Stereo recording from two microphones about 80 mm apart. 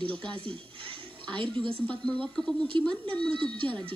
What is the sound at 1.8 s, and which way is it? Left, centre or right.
Speech, centre.